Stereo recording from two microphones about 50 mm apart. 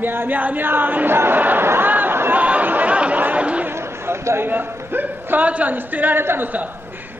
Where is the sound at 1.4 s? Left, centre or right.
Right.